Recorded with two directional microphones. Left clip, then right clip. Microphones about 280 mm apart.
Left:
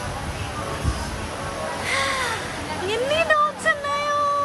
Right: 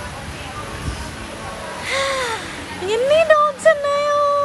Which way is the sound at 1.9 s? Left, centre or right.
Centre.